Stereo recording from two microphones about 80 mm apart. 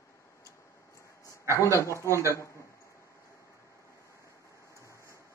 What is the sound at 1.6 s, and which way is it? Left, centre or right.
Speech, left.